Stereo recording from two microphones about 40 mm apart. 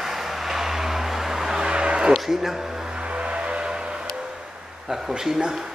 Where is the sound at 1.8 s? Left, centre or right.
Right.